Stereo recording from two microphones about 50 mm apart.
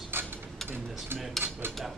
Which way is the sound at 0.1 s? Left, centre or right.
Right.